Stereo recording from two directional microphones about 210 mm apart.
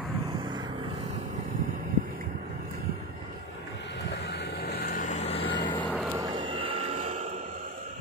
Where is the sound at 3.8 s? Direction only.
55° left (ahead or behind); by 5.5 s 30° left (ahead or behind).